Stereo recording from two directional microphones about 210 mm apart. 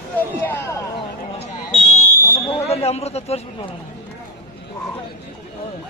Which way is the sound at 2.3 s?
25° left (ahead or behind).